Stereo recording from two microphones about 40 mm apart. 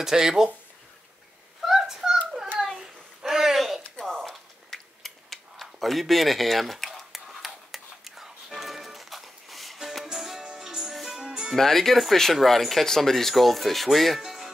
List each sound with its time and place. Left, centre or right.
0.0 s speech: centre
1.6 s a sound: centre
2.8 s babbling: centre
4.2 s a sound: centre
10.1 s music: centre
11.5 s speech: centre
14.2 s music: centre